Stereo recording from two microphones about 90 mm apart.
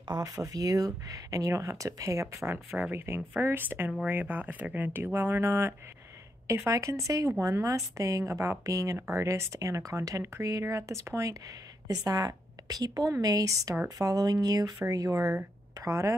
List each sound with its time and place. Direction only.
0.0 s speech: 50° right (ahead or behind)
0.4 s speech: 40° right (ahead or behind)
2.4 s speech: 25° right (ahead or behind)